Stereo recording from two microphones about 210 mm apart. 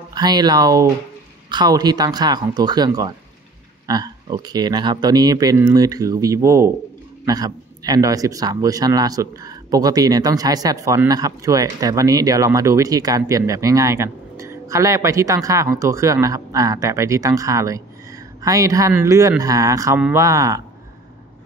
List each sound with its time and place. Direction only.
0.1 s a man's voice: 20° right (ahead or behind)